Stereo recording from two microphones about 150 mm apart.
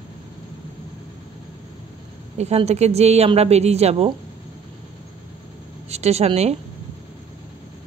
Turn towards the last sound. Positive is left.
turn(degrees=-45)  # may be behind; listen again after turning